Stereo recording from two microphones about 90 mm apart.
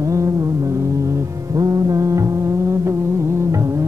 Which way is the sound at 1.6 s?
40° right (ahead or behind).